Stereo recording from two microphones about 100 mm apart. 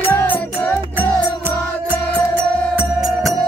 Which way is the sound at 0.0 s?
20° left (ahead or behind).